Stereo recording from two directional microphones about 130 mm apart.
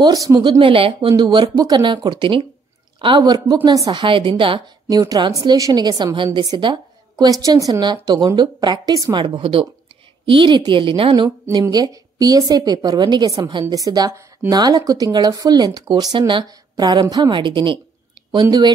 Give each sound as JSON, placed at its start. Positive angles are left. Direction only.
{"t": 0.0, "sound": "a woman's voice", "side_deg": -30}
{"t": 0.6, "sound": "a woman's voice", "side_deg": -45}
{"t": 4.0, "sound": "a woman's voice", "side_deg": -40}
{"t": 4.8, "sound": "a woman's voice", "side_deg": -30}
{"t": 9.2, "sound": "a woman's voice", "side_deg": -40}
{"t": 11.2, "sound": "a woman's voice", "side_deg": -25}